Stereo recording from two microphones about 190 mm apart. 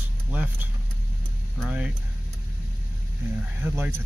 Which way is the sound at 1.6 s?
5° right (ahead or behind).